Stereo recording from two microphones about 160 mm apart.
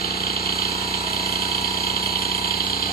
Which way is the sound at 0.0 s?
70° left (ahead or behind).